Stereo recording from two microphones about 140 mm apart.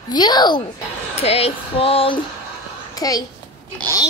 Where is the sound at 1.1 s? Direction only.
45° left (ahead or behind).